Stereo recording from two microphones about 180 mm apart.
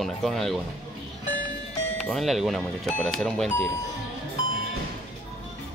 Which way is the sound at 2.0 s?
Centre (ahead or behind).